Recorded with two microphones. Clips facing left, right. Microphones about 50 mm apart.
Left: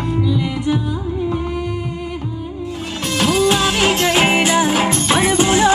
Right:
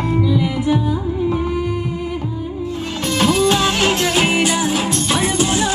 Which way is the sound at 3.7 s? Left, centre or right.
Centre.